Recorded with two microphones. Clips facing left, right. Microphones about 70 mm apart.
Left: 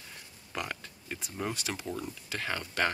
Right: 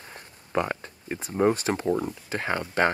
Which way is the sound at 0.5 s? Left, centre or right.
Right.